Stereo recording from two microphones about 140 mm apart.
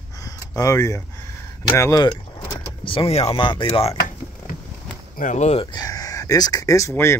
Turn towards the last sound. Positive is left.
turn(degrees=20)  # may be behind; listen again after turning